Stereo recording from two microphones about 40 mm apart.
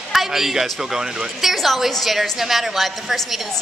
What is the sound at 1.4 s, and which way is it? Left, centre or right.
A woman's voice, centre.